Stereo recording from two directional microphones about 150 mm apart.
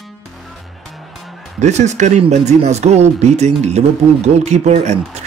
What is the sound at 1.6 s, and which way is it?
Speech, 50° right (ahead or behind).